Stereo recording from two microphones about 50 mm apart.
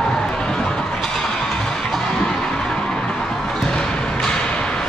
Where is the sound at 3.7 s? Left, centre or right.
Centre.